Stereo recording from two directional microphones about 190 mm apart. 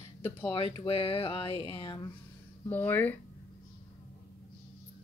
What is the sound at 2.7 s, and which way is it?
Speech, 10° left (ahead or behind).